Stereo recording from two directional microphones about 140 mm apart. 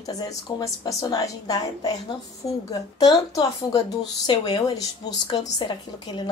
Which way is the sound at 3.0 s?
30° left (ahead or behind).